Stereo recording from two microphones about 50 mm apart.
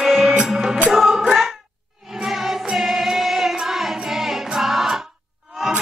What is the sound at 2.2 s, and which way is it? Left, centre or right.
Music, centre.